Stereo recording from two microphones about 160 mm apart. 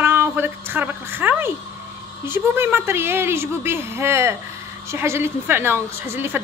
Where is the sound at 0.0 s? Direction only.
15° right (ahead or behind).